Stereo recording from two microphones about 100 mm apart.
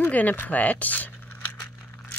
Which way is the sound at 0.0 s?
15° left (ahead or behind).